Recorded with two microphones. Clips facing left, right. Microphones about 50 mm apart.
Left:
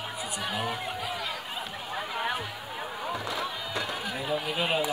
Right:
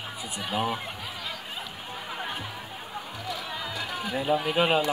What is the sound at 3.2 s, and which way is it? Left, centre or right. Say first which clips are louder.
Music: left 1 dB; left.